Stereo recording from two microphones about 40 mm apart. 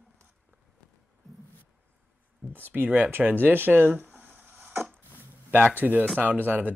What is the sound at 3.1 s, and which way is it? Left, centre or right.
Speech, right.